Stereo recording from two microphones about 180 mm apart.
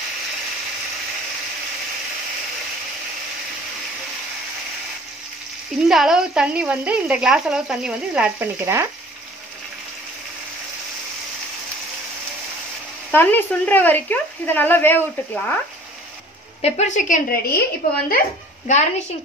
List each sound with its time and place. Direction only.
5.9 s speech: 5° right (ahead or behind)
13.1 s speech: 10° left (ahead or behind)
16.6 s a woman's voice: 40° left (ahead or behind)
18.7 s a woman's voice: 40° left (ahead or behind)